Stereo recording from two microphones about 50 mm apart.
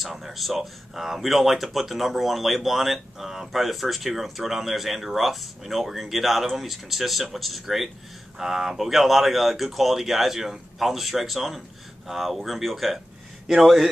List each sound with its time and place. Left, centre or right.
0.0 s speech: centre